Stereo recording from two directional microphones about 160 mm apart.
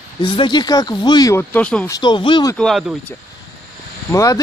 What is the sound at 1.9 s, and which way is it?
Speech, 25° left (ahead or behind).